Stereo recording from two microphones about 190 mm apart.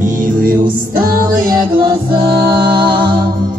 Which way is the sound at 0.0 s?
45° right (ahead or behind).